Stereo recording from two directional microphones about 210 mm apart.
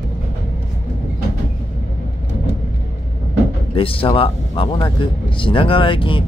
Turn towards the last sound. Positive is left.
turn(degrees=25)  # may be behind; listen again after turning